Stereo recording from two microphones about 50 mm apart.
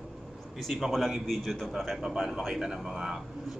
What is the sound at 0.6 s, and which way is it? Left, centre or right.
Speech, centre.